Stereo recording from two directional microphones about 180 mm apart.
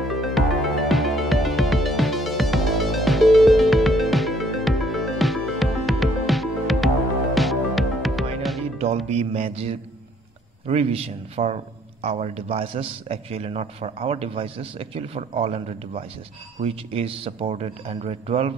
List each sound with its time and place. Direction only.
0.1 s music: centre (ahead or behind)
8.7 s music: 35° right (ahead or behind)
10.7 s a man's voice: 35° right (ahead or behind)